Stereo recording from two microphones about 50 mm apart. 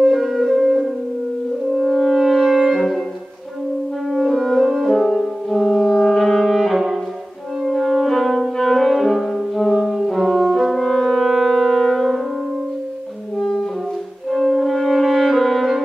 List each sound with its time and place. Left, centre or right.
0.0 s wind instrument: centre
1.8 s french horn: centre
4.1 s music: centre
7.6 s french horn: centre
10.6 s brass instrument: centre
13.4 s music: centre